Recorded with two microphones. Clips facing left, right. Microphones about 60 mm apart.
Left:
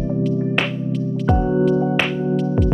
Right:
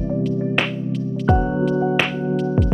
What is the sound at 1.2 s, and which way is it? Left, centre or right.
Music, centre.